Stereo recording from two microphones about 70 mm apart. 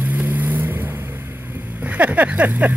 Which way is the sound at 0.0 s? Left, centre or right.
Right.